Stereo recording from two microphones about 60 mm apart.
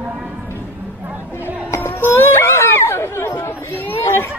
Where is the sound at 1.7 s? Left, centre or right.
Left.